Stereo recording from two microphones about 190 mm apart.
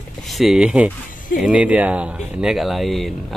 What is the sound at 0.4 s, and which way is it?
Speech, 5° right (ahead or behind).